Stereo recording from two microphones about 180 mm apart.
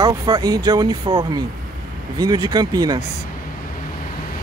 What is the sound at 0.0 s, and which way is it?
Speech, 20° right (ahead or behind).